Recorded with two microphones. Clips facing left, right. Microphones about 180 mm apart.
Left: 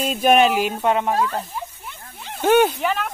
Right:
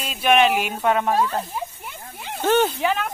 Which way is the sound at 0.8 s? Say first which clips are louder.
Right 2 dB; 20° left (ahead or behind).